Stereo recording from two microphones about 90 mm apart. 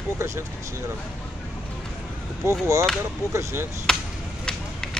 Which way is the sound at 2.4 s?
35° right (ahead or behind).